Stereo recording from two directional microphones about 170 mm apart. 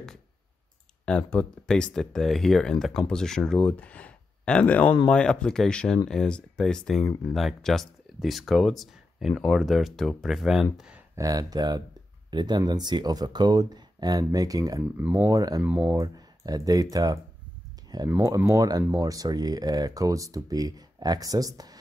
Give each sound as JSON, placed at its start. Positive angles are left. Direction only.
{"t": 1.0, "sound": "speech", "side_deg": 10}
{"t": 11.1, "sound": "speech", "side_deg": -20}
{"t": 15.6, "sound": "speech", "side_deg": -10}
{"t": 16.0, "sound": "speech", "side_deg": -20}